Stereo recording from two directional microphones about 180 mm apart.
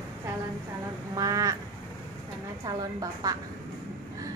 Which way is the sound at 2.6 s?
20° right (ahead or behind).